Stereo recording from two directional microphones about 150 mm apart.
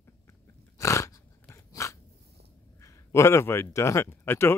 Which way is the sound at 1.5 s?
20° left (ahead or behind).